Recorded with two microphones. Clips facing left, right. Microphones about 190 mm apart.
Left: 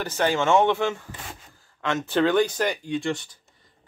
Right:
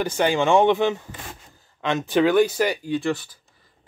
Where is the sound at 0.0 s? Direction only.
15° right (ahead or behind).